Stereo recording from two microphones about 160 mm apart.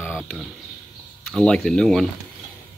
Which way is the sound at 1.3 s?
5° left (ahead or behind).